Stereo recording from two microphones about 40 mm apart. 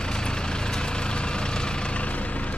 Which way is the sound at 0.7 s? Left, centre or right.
Left.